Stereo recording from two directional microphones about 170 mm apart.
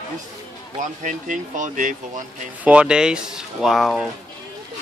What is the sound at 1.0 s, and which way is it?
Speech, 50° right (ahead or behind).